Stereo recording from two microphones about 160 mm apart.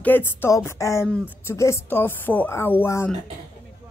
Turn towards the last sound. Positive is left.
turn(degrees=15)  # may be behind; listen again after turning